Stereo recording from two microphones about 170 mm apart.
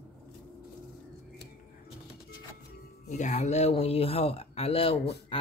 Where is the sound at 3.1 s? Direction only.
40° left (ahead or behind).